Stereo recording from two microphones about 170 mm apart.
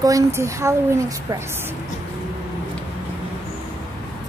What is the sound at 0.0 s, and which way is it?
A woman's voice, 15° right (ahead or behind).